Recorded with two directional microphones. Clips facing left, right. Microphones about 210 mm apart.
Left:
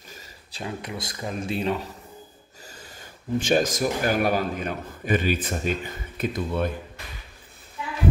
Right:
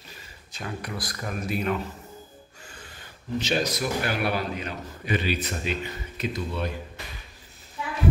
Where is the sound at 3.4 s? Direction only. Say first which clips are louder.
Left 4 dB; 50° left (ahead or behind).